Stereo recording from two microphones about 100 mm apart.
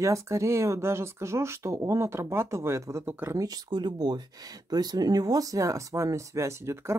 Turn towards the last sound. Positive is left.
turn(degrees=-30)  # may be behind; listen again after turning